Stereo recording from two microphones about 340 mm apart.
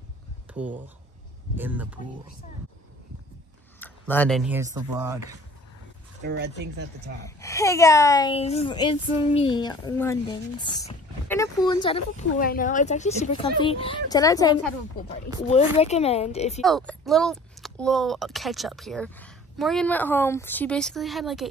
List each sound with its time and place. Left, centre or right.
0.5 s a sound: centre
1.5 s speech: centre
3.8 s speech: centre
6.2 s speech: right
7.2 s a child's voice: centre
16.6 s speech: centre